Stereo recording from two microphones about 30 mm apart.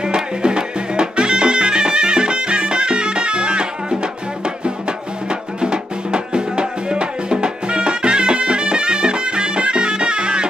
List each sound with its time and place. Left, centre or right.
0.0 s music: right